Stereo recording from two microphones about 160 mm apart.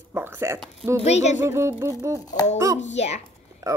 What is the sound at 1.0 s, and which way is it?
Speech, 45° left (ahead or behind).